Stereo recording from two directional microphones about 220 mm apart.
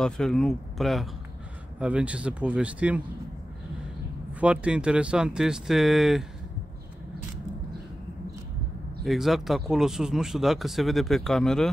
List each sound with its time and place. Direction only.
0.0 s speech: 5° left (ahead or behind)
4.3 s speech: 5° right (ahead or behind)
9.0 s speech: centre (ahead or behind)